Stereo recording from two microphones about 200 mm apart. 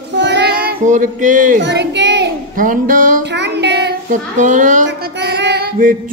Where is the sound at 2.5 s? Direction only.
40° right (ahead or behind).